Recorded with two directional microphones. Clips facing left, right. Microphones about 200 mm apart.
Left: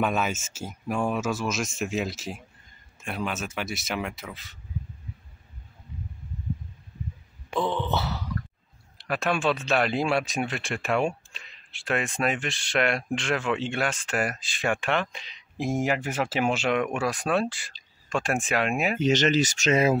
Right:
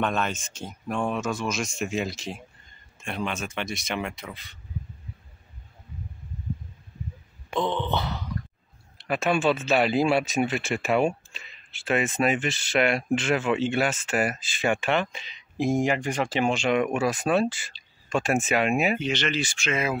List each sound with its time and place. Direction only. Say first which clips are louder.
0.0 s speech: left 1 dB; 5° left (ahead or behind)
7.5 s speech: even; 5° left (ahead or behind)
18.9 s speech: left 5 dB; 40° left (ahead or behind)